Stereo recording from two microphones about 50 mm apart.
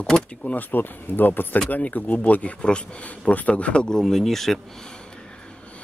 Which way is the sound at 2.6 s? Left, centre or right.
Centre.